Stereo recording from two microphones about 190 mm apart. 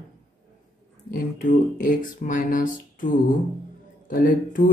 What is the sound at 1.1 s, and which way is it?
A man's voice, 45° left (ahead or behind).